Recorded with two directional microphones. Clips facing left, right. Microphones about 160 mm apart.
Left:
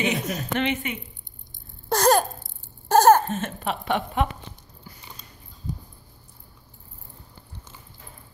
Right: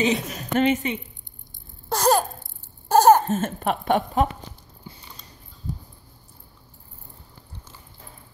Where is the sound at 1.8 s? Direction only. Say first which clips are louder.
Left 1 dB; 5° right (ahead or behind).